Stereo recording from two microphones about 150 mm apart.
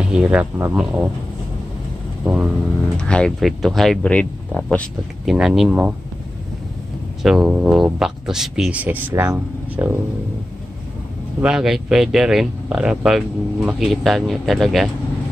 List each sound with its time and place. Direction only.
0.1 s speech: 5° right (ahead or behind)
2.2 s speech: 5° right (ahead or behind)
3.0 s speech: 5° left (ahead or behind)
7.2 s speech: 5° right (ahead or behind)
11.4 s speech: 5° right (ahead or behind)